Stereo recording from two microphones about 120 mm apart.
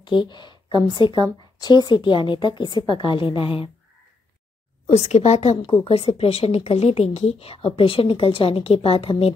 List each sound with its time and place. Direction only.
0.0 s a sound: 40° left (ahead or behind)
0.8 s a woman's voice: 40° left (ahead or behind)
4.8 s speech: 70° left (ahead or behind)
5.9 s a woman's voice: 55° left (ahead or behind)